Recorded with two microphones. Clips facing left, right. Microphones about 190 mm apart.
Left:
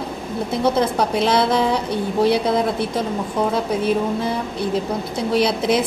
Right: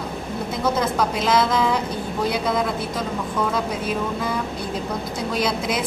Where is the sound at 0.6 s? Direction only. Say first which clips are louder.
Left 3 dB; 30° left (ahead or behind).